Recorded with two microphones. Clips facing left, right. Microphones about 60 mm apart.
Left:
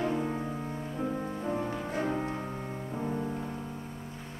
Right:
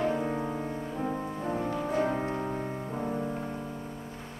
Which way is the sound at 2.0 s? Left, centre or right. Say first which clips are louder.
Right 3 dB; centre.